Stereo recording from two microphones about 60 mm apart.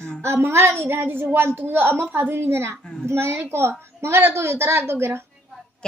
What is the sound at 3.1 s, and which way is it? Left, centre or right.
A woman's voice, right.